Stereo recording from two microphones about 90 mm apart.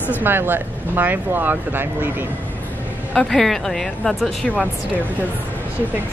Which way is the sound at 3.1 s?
5° left (ahead or behind).